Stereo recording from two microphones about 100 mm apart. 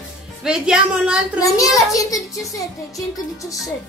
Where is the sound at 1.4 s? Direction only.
35° left (ahead or behind).